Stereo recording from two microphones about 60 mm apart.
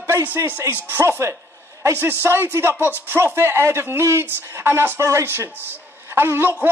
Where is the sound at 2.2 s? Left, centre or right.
Right.